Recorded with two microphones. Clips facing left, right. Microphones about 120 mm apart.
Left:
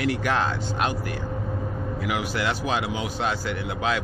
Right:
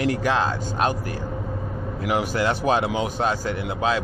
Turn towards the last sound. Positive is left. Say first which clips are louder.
# right 3 dB
turn(degrees=-35)  # may be behind; listen again after turning